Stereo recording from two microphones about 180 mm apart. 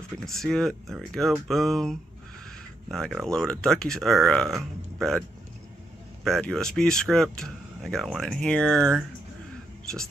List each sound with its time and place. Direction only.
0.2 s speech: centre (ahead or behind)
6.2 s speech: centre (ahead or behind)